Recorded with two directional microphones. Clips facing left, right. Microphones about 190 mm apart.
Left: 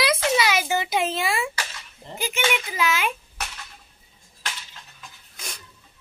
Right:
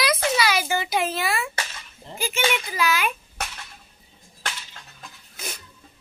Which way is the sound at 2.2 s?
15° left (ahead or behind).